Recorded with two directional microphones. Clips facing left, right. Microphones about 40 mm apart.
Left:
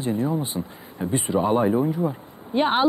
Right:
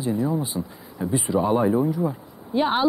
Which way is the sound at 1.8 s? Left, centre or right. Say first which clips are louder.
Even; left.